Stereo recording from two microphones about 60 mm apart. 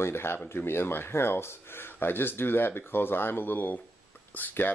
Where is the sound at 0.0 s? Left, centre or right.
Left.